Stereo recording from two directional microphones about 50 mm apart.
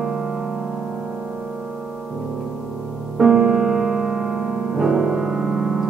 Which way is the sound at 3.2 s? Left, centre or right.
Centre.